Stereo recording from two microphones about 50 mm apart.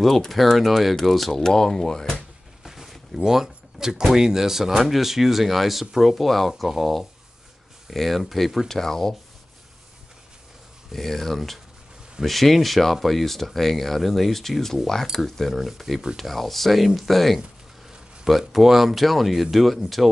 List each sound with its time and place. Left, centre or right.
0.0 s speech: centre
2.6 s a sound: centre
3.2 s speech: centre
10.9 s speech: centre
18.5 s speech: centre